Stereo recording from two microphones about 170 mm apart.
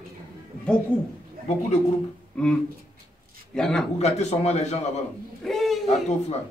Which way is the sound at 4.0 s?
40° left (ahead or behind).